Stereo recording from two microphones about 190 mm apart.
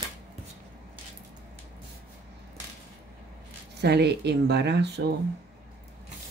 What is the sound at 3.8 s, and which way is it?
Speech, 60° right (ahead or behind).